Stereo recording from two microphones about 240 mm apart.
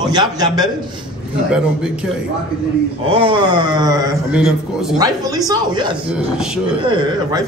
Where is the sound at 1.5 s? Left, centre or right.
Centre.